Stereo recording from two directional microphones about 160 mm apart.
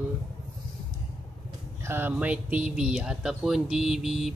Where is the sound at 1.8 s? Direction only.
15° right (ahead or behind).